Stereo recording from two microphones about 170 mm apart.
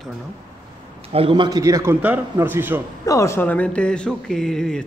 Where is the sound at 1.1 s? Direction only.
30° right (ahead or behind); by 2.8 s 10° right (ahead or behind).